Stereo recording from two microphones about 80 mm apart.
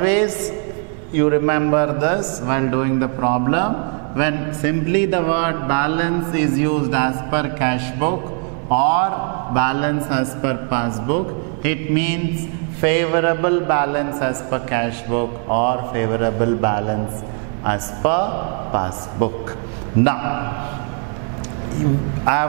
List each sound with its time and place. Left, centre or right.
0.0 s a man's voice: centre
22.2 s a man's voice: centre